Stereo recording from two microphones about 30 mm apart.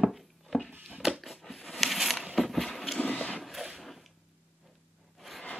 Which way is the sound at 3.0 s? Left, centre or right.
Left.